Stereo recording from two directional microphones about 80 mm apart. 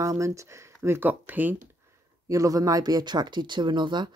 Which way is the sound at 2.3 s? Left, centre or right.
Right.